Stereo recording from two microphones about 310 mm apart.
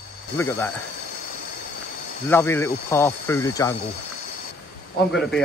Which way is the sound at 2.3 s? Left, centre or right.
Centre.